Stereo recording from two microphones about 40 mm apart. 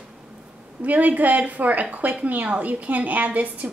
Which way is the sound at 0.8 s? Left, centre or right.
Right.